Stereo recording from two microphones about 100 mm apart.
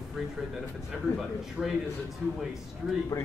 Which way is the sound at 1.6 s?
5° right (ahead or behind).